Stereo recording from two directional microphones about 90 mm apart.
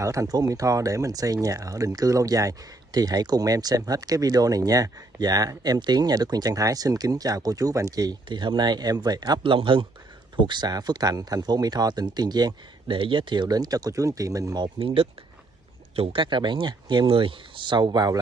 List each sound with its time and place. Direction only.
0.0 s speech: 40° right (ahead or behind)
9.4 s speech: 80° right
10.4 s speech: 55° right (ahead or behind)
12.9 s speech: 70° right (ahead or behind); by 14.6 s 40° right (ahead or behind)
14.6 s speech: 90° right
16.0 s speech: 80° right; by 18.1 s 55° right (ahead or behind)